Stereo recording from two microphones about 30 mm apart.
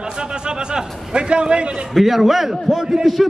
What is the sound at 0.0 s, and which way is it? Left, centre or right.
Speech, right.